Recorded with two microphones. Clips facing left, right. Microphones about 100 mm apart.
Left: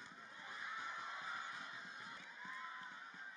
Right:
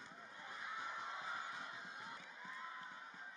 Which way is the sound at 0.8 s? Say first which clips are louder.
Right 1 dB; 25° right (ahead or behind).